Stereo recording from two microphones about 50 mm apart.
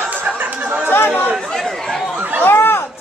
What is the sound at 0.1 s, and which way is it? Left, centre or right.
Chatter, right.